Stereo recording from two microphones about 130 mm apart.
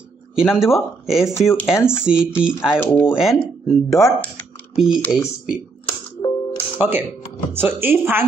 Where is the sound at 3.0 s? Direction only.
5° right (ahead or behind).